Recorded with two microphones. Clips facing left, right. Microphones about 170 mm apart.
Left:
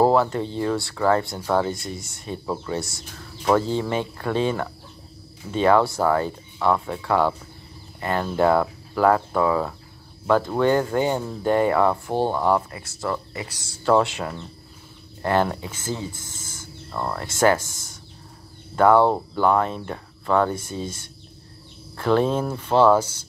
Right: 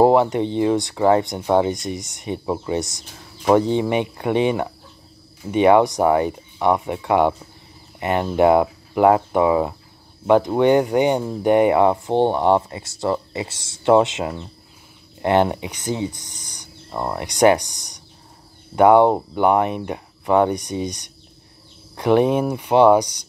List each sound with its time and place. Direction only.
0.0 s speech: 20° right (ahead or behind)